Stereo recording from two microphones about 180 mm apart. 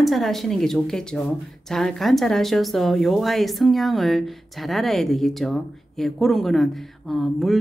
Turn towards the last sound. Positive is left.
turn(degrees=0)  # may be behind; listen again after turning